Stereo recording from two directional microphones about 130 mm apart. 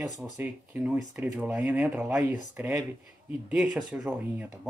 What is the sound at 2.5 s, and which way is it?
Speech, 15° right (ahead or behind).